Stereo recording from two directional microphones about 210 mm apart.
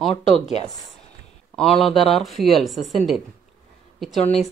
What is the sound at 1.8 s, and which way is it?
Speech, centre (ahead or behind).